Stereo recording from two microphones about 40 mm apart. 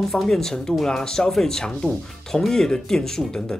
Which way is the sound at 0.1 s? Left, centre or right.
Centre.